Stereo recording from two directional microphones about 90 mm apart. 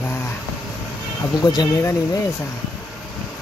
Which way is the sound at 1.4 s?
45° left (ahead or behind).